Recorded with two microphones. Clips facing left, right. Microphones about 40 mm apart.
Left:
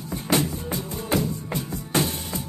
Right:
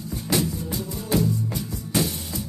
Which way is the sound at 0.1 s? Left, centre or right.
Left.